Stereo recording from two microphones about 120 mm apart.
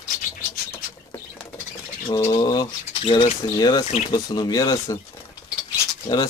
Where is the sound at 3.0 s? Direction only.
50° left (ahead or behind).